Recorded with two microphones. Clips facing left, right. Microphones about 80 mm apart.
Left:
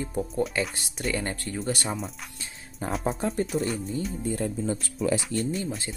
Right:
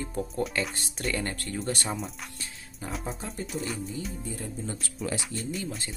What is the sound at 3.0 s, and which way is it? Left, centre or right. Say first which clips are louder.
Speech: left 9 dB; left.